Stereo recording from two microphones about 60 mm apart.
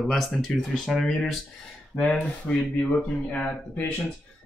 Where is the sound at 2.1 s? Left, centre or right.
Left.